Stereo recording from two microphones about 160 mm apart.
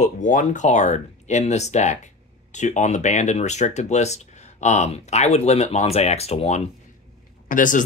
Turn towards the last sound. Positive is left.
turn(degrees=55)  # may be behind; listen again after turning